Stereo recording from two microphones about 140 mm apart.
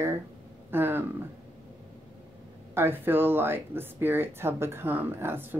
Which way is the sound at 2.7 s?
15° right (ahead or behind).